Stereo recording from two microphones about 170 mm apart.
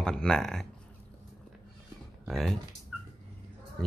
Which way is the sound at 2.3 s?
Centre (ahead or behind).